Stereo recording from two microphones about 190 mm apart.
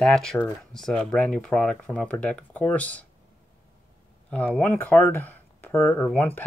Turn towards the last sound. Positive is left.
turn(degrees=10)  # may be behind; listen again after turning